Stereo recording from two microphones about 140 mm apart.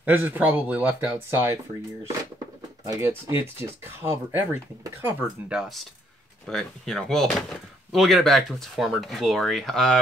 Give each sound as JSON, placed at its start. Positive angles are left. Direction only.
{"t": 0.0, "sound": "speech", "side_deg": -15}
{"t": 2.8, "sound": "speech", "side_deg": -20}
{"t": 5.5, "sound": "speech", "side_deg": -5}